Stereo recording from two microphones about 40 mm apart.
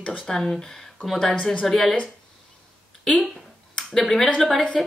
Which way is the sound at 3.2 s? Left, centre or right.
Centre.